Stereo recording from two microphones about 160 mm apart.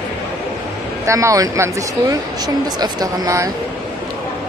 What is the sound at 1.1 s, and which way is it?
Speech, 20° right (ahead or behind).